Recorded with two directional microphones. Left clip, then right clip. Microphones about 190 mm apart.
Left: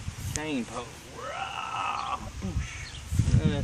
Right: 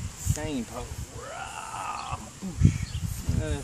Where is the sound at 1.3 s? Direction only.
30° right (ahead or behind).